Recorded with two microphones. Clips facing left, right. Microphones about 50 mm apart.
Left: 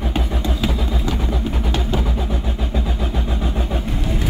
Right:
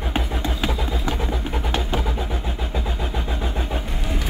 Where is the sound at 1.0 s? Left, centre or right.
Right.